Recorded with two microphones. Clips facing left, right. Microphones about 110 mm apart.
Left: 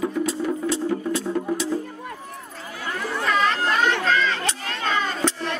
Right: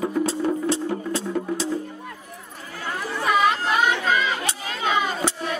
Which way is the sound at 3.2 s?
15° right (ahead or behind).